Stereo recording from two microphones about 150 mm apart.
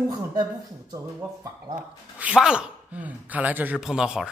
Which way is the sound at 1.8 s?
10° right (ahead or behind).